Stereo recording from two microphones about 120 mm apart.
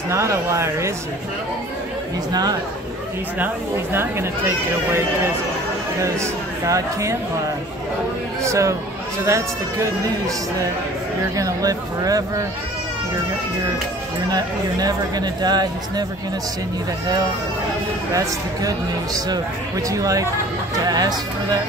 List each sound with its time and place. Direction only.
0.1 s speech: 25° right (ahead or behind)
3.3 s speech: 15° right (ahead or behind)
8.4 s speech: 25° right (ahead or behind)
14.3 s speech: 35° right (ahead or behind)
18.1 s speech: 30° right (ahead or behind)